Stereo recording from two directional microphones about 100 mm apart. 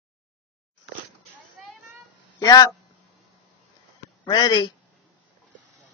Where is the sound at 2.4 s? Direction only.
40° left (ahead or behind).